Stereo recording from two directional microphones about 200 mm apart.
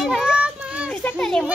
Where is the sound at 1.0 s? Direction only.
5° left (ahead or behind).